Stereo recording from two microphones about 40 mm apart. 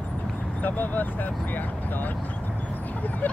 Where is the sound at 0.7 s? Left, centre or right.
Left.